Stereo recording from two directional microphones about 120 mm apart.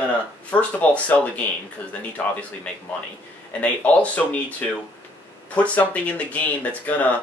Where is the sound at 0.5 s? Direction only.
10° left (ahead or behind).